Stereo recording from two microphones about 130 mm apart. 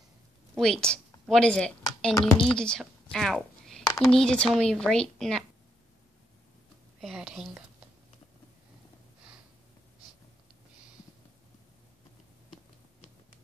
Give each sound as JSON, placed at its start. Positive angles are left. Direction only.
{"t": 0.6, "sound": "speech", "side_deg": 5}
{"t": 7.0, "sound": "speech", "side_deg": -5}